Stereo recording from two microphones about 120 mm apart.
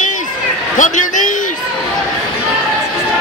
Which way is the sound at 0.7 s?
90° left.